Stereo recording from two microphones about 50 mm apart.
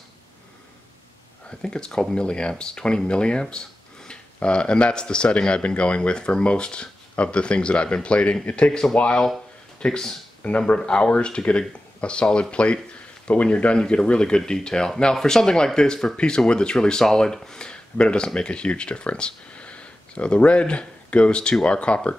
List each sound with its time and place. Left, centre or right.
1.6 s speech: centre
10.4 s speech: left